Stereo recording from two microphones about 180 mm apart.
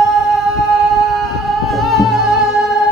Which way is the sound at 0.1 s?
Centre (ahead or behind).